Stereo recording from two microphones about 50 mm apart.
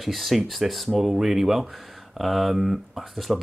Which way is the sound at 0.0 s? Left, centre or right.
Centre.